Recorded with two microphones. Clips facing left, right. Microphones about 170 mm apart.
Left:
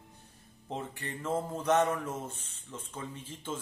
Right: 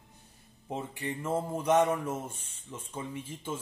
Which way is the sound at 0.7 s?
10° right (ahead or behind).